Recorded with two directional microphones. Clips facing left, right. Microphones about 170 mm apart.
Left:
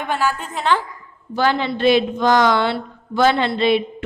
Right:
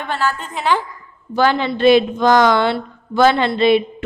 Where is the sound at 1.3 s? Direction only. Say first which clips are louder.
Right 3 dB; 55° right (ahead or behind).